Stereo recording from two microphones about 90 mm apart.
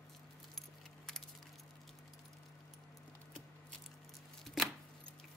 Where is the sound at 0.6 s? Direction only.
5° left (ahead or behind).